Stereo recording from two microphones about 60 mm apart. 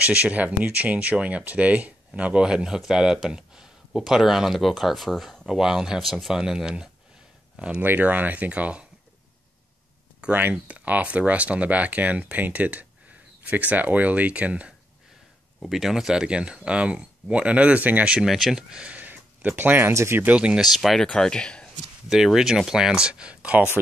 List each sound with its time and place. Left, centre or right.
0.0 s speech: right
7.8 s speech: right
10.2 s speech: right
15.7 s speech: centre; by 18.2 s right
18.2 s speech: centre
18.8 s a sound: right
19.9 s speech: right
20.2 s speech: right
20.6 s speech: centre
21.1 s speech: centre
22.1 s speech: centre